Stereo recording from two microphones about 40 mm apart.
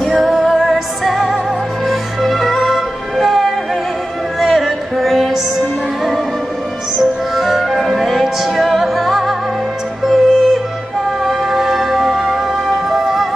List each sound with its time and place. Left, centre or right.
0.2 s music: centre
7.0 s music: centre